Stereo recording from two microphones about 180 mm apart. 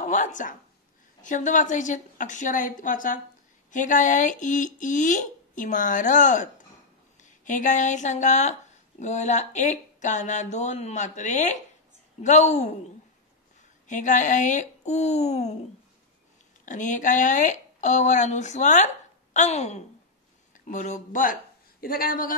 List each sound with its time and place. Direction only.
0.0 s speech: 45° left (ahead or behind)
13.8 s speech: 45° left (ahead or behind)
16.6 s speech: 45° left (ahead or behind)